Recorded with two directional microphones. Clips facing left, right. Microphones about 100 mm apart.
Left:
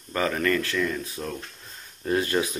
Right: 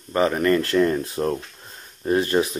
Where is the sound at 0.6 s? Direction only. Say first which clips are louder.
Right 7 dB; 45° right (ahead or behind).